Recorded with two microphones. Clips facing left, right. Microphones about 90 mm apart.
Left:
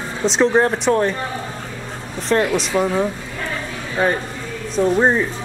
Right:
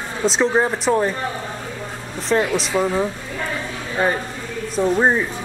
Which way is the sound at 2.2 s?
Centre (ahead or behind).